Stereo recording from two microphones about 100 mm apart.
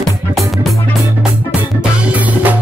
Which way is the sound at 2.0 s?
15° right (ahead or behind).